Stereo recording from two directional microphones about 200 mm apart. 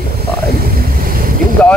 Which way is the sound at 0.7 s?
45° right (ahead or behind).